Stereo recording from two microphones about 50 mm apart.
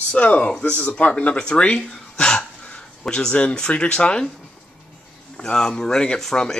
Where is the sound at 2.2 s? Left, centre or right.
Left.